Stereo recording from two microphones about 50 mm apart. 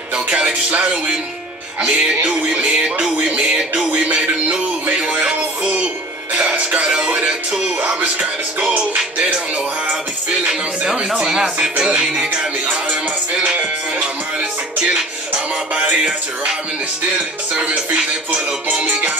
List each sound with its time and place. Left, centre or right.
0.1 s music: right
7.1 s music: right
11.1 s music: centre
13.4 s music: right
14.8 s music: right
17.6 s music: right